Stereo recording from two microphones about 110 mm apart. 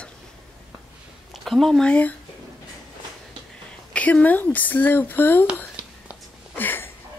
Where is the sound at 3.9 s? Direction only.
10° left (ahead or behind).